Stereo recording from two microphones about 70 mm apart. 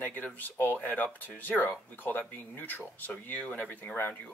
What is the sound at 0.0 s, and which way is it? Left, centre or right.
Speech, left.